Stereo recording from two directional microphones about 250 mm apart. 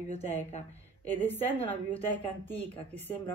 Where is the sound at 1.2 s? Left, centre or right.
Centre.